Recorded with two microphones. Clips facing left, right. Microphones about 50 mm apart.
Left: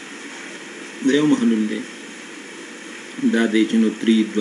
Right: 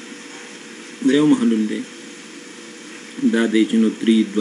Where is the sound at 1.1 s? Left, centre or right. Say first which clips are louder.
Right 2 dB; centre.